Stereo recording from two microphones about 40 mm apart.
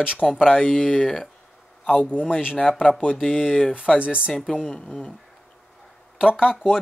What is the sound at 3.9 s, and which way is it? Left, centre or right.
Speech, right.